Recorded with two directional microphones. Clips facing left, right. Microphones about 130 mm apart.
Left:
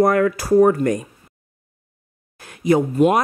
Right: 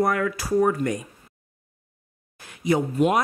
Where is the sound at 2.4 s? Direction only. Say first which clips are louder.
Left 5 dB; 50° left (ahead or behind).